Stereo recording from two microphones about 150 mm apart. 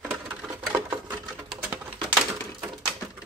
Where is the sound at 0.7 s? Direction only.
15° right (ahead or behind).